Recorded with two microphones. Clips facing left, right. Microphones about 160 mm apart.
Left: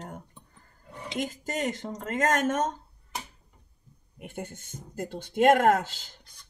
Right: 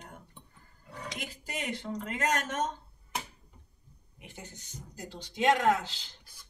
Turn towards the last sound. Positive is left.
turn(degrees=50)  # may be behind; listen again after turning